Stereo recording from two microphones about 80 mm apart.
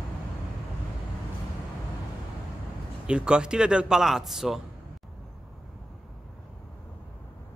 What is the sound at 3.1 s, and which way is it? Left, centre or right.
Speech, centre.